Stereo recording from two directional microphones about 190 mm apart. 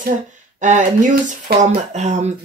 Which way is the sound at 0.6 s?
40° right (ahead or behind).